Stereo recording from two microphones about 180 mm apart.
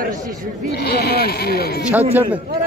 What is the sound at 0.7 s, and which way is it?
Speech, 60° left (ahead or behind).